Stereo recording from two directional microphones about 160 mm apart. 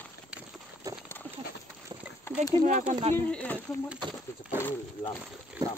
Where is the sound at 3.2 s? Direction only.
10° left (ahead or behind).